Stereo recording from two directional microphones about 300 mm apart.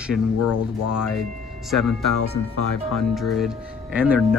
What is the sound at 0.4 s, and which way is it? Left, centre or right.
Speech, left.